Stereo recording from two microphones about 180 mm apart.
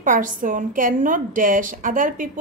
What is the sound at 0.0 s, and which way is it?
A woman's voice, 45° right (ahead or behind).